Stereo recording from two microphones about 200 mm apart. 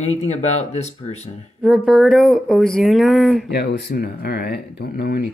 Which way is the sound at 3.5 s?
60° left (ahead or behind).